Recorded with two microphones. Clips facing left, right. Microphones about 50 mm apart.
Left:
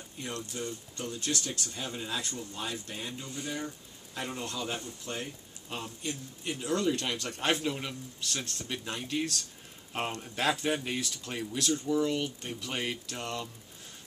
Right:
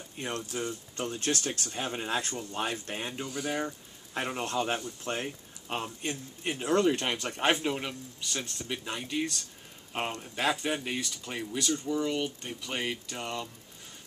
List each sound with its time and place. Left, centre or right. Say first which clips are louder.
0.2 s a man's voice: right 3 dB; right; by 7.9 s centre
8.2 s speech: even; centre